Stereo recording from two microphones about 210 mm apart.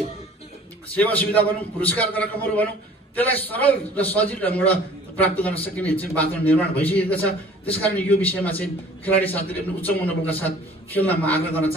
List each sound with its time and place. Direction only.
0.9 s a man's voice: 5° left (ahead or behind)